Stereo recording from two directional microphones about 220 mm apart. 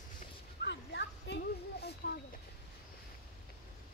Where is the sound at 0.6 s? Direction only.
50° left (ahead or behind).